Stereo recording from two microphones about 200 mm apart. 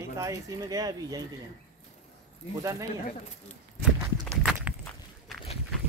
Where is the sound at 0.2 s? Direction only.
15° right (ahead or behind).